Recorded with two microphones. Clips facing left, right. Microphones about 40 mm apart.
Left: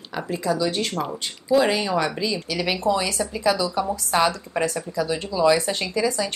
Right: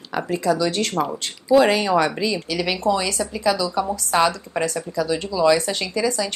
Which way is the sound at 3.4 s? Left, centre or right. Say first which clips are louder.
Right 1 dB; left.